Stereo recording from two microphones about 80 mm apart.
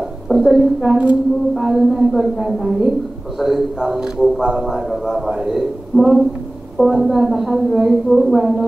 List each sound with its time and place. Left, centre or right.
0.3 s a woman's voice: centre
0.8 s a man's voice: centre